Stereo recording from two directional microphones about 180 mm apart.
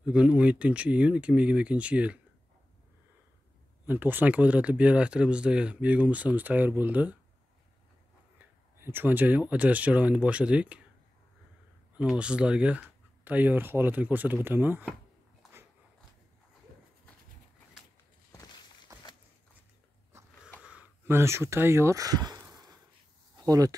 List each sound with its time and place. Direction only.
0.0 s speech: 5° right (ahead or behind)
3.8 s speech: 10° right (ahead or behind)
8.4 s speech: 10° right (ahead or behind)
12.0 s speech: 5° right (ahead or behind)
18.3 s walk: 20° left (ahead or behind)
18.9 s a sound: 20° right (ahead or behind)
20.1 s a sound: 15° right (ahead or behind)